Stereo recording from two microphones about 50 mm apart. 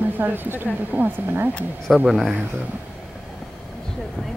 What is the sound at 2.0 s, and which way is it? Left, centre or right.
Speech, centre.